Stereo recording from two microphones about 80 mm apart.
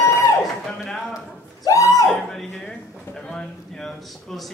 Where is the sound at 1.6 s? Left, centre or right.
Left.